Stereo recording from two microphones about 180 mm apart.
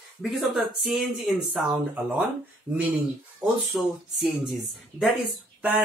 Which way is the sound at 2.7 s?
25° right (ahead or behind).